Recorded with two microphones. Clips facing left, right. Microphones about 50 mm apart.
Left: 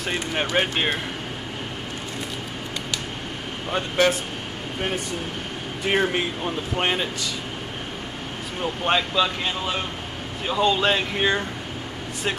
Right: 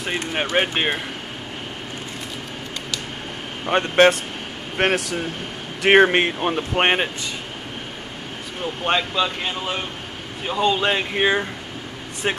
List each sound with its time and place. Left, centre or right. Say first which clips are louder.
0.0 s speech: right 1 dB; centre
3.7 s speech: right 6 dB; right
4.7 s speech: right 7 dB; right
8.8 s speech: right 1 dB; centre